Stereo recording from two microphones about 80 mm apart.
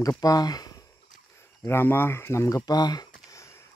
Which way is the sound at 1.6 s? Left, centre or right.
Left.